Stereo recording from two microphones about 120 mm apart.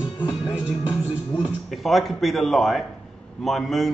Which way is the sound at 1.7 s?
Centre (ahead or behind).